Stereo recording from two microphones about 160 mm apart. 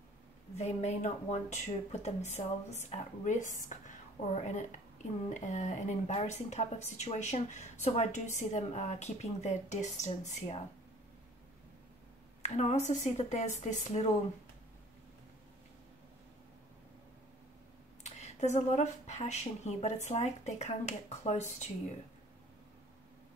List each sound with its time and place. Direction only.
0.6 s speech: 45° left (ahead or behind)
5.3 s speech: 50° left (ahead or behind)
12.4 s speech: 45° left (ahead or behind)
18.0 s speech: 45° left (ahead or behind)